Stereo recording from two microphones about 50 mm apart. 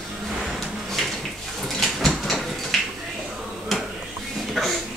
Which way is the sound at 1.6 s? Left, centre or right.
Centre.